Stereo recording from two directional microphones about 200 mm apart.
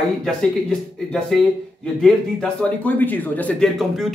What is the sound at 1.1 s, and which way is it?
Speech, 5° left (ahead or behind).